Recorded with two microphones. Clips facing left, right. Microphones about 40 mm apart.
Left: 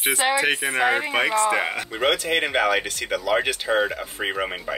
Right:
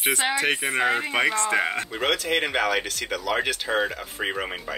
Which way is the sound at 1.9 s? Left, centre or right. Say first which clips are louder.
Left 2 dB; centre.